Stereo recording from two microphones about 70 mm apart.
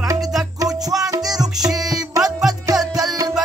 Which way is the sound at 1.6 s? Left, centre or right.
Centre.